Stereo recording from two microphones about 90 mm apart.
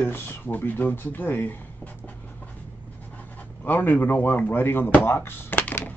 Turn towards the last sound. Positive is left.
turn(degrees=20)  # may be behind; listen again after turning